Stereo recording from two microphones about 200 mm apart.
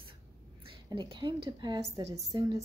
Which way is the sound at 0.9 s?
20° right (ahead or behind).